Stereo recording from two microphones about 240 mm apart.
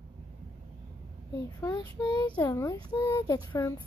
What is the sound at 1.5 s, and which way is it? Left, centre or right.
A child's voice, centre.